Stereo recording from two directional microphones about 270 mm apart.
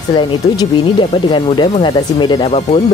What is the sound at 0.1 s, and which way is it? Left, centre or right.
Speech, centre.